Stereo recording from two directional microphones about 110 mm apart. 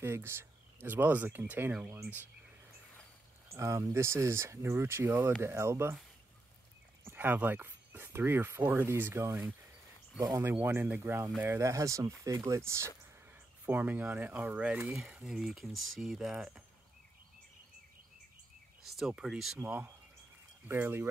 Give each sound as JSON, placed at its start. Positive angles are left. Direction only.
{"t": 0.0, "sound": "speech", "side_deg": -20}
{"t": 3.5, "sound": "speech", "side_deg": -25}
{"t": 7.1, "sound": "speech", "side_deg": -15}
{"t": 10.4, "sound": "speech", "side_deg": -20}
{"t": 13.7, "sound": "speech", "side_deg": -15}
{"t": 18.9, "sound": "speech", "side_deg": -5}